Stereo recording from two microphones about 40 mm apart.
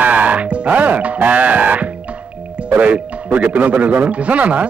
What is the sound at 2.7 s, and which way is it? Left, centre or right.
A man's voice, right.